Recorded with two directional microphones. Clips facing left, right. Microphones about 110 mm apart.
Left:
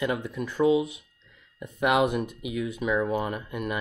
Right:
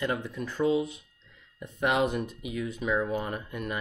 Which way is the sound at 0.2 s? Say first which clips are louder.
Left 3 dB; 10° left (ahead or behind).